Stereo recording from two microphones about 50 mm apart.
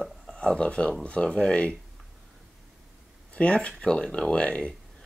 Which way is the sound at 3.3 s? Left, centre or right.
Left.